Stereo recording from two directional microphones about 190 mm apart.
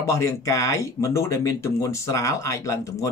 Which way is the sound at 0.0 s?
15° left (ahead or behind).